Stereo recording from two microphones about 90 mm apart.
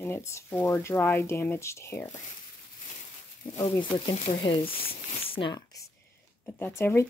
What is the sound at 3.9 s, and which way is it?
Speech, 65° left (ahead or behind).